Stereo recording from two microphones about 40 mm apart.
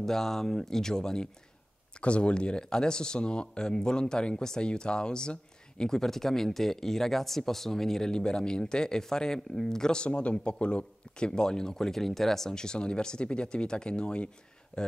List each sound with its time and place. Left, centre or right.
0.0 s speech: centre
2.0 s speech: left; by 8.1 s centre
8.1 s speech: left